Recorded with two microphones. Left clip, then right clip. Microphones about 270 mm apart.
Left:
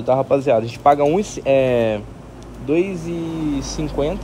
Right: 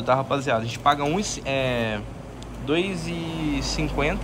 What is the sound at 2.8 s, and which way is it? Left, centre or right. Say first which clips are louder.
Speech: left 5 dB; centre.